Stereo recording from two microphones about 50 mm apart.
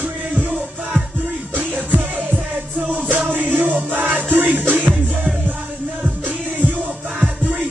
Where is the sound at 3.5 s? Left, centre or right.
Right.